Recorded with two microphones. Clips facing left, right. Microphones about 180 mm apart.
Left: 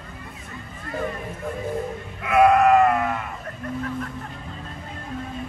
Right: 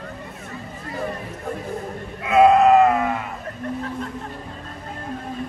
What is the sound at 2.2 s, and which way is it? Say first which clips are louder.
Sheep: right 2 dB; 20° right (ahead or behind).